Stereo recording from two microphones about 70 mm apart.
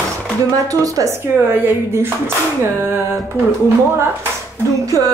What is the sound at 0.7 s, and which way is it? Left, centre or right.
Speech, right.